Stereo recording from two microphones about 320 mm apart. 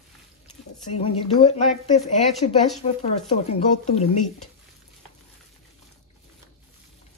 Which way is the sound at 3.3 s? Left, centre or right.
Centre.